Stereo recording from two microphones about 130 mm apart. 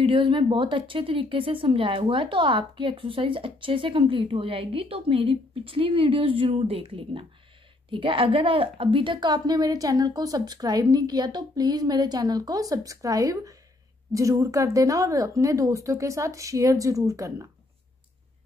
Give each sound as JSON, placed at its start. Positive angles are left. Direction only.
{"t": 0.0, "sound": "a woman's voice", "side_deg": -40}